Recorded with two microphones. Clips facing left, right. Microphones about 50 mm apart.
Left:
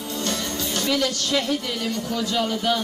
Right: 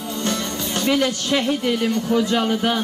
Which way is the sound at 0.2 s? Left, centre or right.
Right.